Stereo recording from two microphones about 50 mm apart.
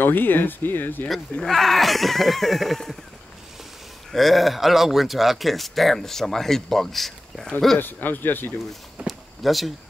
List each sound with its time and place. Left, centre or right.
0.0 s speech: left
1.4 s speech: centre
4.1 s speech: centre
7.8 s speech: left
9.0 s a sound: centre